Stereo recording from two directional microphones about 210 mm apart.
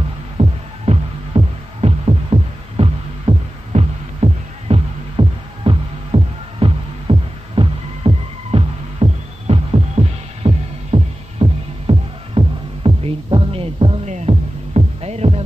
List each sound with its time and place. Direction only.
0.4 s music: 25° right (ahead or behind)